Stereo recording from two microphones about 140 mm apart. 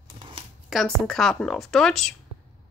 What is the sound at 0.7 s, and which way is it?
A woman's voice, centre (ahead or behind).